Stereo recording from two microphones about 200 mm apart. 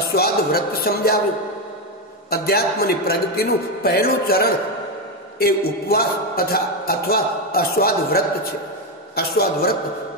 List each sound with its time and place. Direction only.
0.1 s speech: 50° left (ahead or behind)
2.2 s speech: 50° left (ahead or behind)